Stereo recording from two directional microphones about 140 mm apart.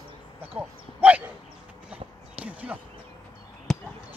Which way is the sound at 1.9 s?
10° right (ahead or behind).